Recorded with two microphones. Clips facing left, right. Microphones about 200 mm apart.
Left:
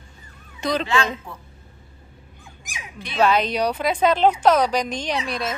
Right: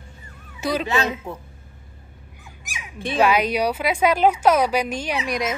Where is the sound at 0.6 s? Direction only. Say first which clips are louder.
Even; 10° right (ahead or behind).